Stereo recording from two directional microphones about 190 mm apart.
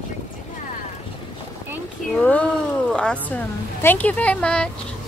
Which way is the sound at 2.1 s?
10° left (ahead or behind).